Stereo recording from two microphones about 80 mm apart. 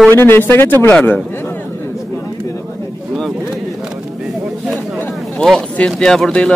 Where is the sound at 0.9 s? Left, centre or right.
Centre.